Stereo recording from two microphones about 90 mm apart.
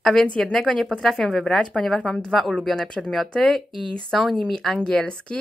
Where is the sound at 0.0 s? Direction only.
5° left (ahead or behind).